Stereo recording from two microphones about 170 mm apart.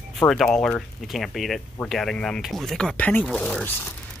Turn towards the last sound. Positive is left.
turn(degrees=5)  # may be behind; listen again after turning